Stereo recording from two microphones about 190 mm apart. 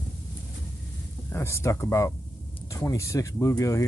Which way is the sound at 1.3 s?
15° left (ahead or behind).